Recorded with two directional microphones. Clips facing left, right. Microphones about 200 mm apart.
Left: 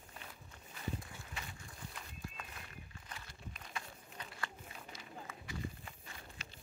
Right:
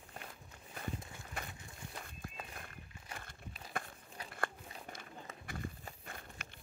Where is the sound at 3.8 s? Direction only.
55° right (ahead or behind).